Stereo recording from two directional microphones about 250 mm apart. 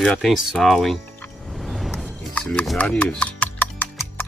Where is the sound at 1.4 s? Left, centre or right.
Centre.